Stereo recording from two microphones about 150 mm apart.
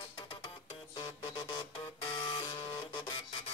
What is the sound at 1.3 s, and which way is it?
Printer, 35° left (ahead or behind).